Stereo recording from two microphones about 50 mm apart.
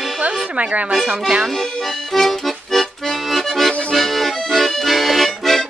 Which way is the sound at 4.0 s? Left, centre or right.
Centre.